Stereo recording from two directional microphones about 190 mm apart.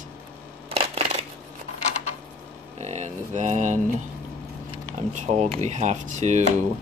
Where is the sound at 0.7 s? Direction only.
30° right (ahead or behind).